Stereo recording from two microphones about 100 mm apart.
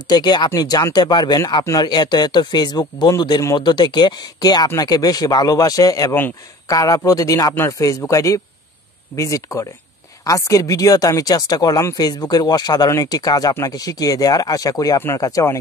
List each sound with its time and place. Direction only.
0.1 s speech: 45° left (ahead or behind)